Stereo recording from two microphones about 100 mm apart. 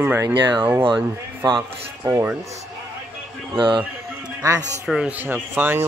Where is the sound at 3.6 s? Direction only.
55° right (ahead or behind).